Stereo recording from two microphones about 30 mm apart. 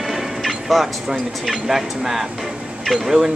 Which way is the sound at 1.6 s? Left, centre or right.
Centre.